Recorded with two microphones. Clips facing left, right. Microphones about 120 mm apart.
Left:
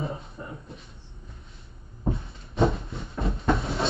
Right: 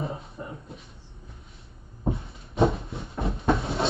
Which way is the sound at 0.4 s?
25° right (ahead or behind).